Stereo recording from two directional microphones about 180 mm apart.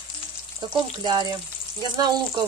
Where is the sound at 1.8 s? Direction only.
20° right (ahead or behind).